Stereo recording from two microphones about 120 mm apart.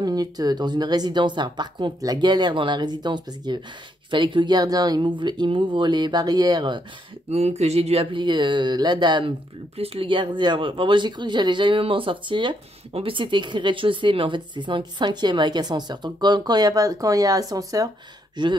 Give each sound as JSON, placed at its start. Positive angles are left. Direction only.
{"t": 0.0, "sound": "speech", "side_deg": -30}
{"t": 7.2, "sound": "speech", "side_deg": -65}
{"t": 9.8, "sound": "speech", "side_deg": -55}